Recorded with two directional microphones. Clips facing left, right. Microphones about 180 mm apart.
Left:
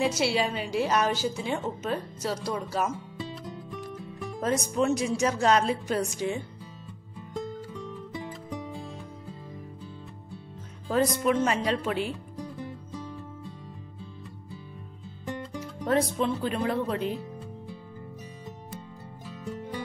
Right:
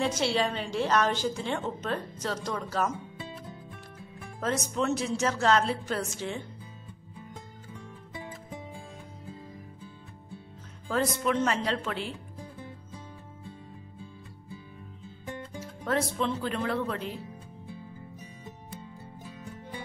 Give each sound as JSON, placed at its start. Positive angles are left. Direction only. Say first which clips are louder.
{"t": 0.0, "sound": "a woman's voice", "louder": "left 2 dB", "side_deg": 10}
{"t": 4.4, "sound": "a woman's voice", "louder": "left 3 dB", "side_deg": 15}
{"t": 10.9, "sound": "a woman's voice", "louder": "left 3 dB", "side_deg": 15}
{"t": 15.8, "sound": "a woman's voice", "louder": "left 3 dB", "side_deg": 15}